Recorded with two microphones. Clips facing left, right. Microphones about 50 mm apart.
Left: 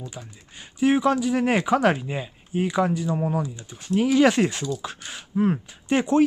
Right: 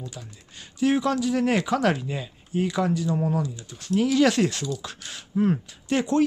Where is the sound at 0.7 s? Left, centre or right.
Centre.